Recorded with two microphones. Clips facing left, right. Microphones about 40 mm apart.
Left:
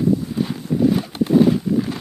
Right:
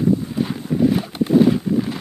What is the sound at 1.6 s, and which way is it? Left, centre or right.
Vehicle, centre.